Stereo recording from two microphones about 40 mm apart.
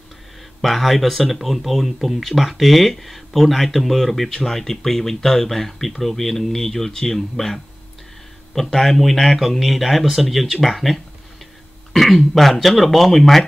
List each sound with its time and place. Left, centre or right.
0.6 s speech: centre
11.9 s throat clearing: centre
12.4 s speech: centre